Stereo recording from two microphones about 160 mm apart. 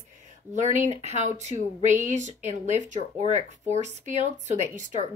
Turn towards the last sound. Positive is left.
turn(degrees=-45)  # may be behind; listen again after turning